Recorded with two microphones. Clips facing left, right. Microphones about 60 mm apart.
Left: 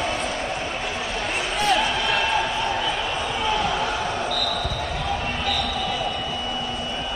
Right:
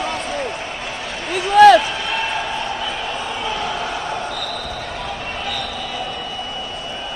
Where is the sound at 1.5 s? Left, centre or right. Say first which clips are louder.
Right 15 dB; right.